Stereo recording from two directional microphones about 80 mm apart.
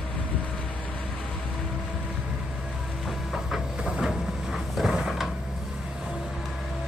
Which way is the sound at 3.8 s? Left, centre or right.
Centre.